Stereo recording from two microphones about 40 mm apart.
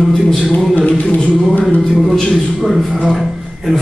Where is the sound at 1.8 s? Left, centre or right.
Centre.